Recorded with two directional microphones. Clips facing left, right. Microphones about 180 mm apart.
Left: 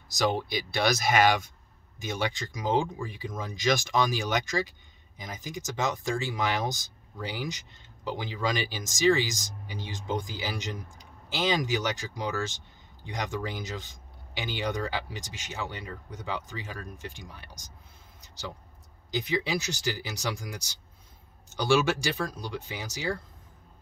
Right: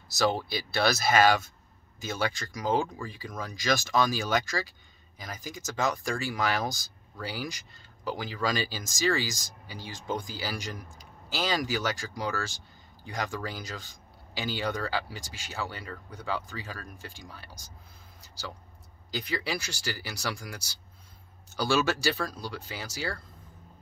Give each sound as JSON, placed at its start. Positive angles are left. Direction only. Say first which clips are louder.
{"t": 0.1, "sound": "speech", "louder": "even", "side_deg": 15}
{"t": 19.0, "sound": "speech", "louder": "left 3 dB", "side_deg": 20}